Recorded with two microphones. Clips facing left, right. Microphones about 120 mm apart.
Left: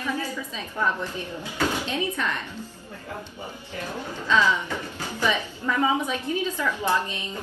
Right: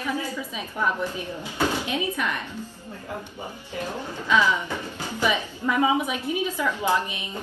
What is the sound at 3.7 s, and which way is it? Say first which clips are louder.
A woman's voice: right 2 dB; 15° right (ahead or behind).